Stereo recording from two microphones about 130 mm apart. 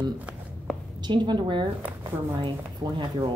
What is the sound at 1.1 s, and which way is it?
A woman's voice, 35° right (ahead or behind).